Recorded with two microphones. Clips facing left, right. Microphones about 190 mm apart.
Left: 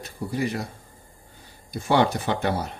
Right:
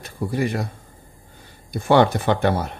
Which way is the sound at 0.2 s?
55° right (ahead or behind).